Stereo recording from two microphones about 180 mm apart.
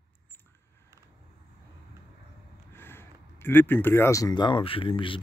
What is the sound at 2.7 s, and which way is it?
Speech, 10° left (ahead or behind).